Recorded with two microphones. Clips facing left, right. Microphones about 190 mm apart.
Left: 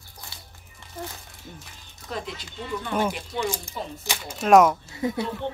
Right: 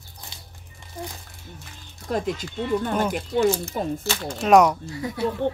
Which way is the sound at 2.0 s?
50° right (ahead or behind).